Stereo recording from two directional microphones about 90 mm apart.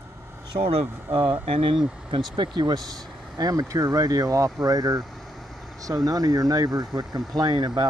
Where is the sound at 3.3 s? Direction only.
45° right (ahead or behind).